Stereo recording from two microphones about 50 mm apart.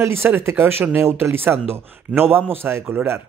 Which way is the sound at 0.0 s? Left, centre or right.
Right.